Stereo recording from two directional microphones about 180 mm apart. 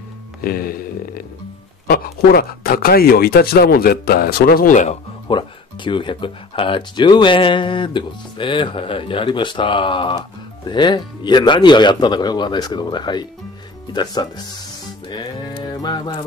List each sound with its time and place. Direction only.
0.4 s a sound: 55° left (ahead or behind)
1.9 s speech: 60° left (ahead or behind)
5.3 s speech: 25° left (ahead or behind)
15.0 s music: 25° left (ahead or behind)